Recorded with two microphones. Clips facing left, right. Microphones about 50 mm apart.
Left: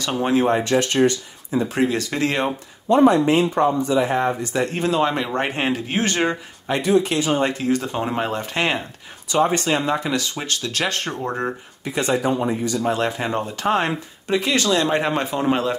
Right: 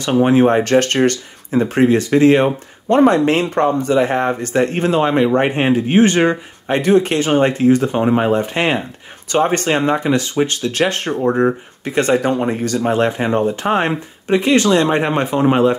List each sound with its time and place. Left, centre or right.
0.0 s speech: right
0.7 s speech: right
1.8 s speech: right
2.9 s speech: right
4.6 s speech: right
5.0 s speech: right
6.8 s speech: right
7.4 s speech: right
9.3 s speech: right
9.8 s speech: right
11.8 s speech: right
12.8 s speech: right